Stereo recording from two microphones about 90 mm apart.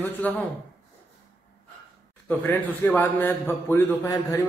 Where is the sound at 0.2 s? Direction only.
15° left (ahead or behind).